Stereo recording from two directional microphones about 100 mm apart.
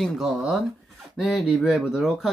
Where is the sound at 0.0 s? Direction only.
5° right (ahead or behind).